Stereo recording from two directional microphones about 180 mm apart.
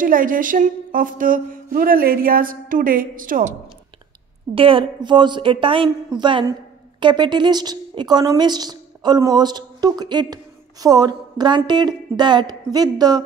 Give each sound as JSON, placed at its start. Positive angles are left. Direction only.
{"t": 0.0, "sound": "a woman's voice", "side_deg": -50}
{"t": 4.6, "sound": "a woman's voice", "side_deg": -30}